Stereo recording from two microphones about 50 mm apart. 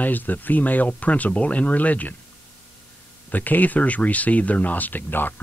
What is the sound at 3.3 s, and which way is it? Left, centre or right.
Speech, left.